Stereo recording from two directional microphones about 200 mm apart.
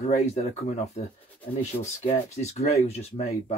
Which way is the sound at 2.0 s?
35° left (ahead or behind).